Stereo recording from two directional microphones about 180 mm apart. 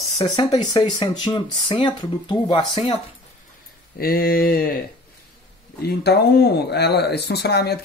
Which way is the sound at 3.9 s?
55° left (ahead or behind).